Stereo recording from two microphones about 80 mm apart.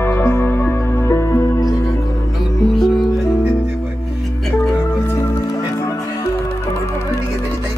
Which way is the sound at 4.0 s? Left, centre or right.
Centre.